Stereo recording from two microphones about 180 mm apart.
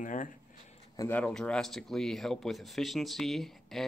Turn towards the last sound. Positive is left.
turn(degrees=0)  # may be behind; listen again after turning